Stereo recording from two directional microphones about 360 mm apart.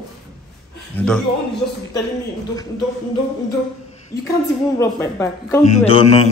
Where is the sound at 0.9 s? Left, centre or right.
Centre.